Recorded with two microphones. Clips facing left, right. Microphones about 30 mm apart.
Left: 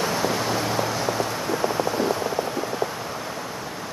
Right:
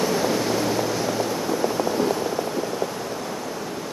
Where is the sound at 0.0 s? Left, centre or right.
Centre.